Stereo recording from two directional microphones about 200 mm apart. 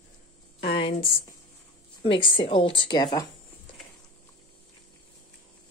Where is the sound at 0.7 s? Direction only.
25° left (ahead or behind).